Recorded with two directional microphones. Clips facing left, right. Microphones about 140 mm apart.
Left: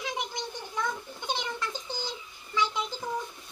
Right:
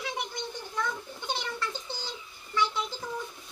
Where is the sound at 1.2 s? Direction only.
15° left (ahead or behind).